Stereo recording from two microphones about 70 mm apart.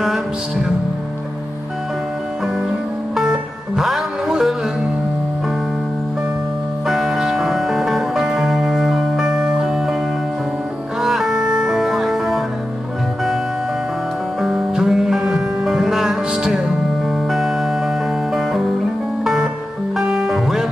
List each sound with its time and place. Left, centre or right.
0.0 s music: centre
3.2 s music: centre
6.9 s music: centre
11.0 s music: centre
14.4 s music: centre